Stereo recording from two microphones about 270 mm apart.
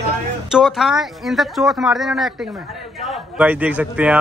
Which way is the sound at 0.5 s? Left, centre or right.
Centre.